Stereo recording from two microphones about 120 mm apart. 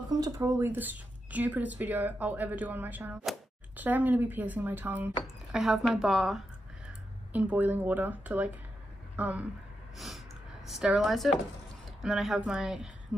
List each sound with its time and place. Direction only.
0.1 s speech: 30° right (ahead or behind)
0.6 s speech: 15° right (ahead or behind)
5.2 s speech: 5° right (ahead or behind)
6.9 s speech: 10° right (ahead or behind)
9.9 s gasp: centre (ahead or behind)
10.7 s speech: 5° right (ahead or behind)